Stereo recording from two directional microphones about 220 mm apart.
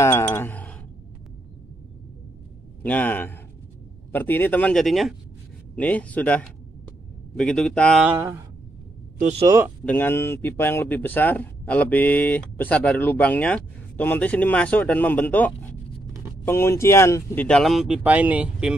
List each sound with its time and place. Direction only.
0.0 s a sound: 10° left (ahead or behind)
2.8 s a man's voice: 5° left (ahead or behind); by 8.4 s 10° right (ahead or behind)
9.2 s speech: 30° right (ahead or behind)
9.8 s a man's voice: 10° left (ahead or behind)